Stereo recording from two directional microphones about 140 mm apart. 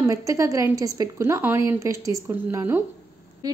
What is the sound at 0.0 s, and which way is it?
A woman's voice, 25° right (ahead or behind).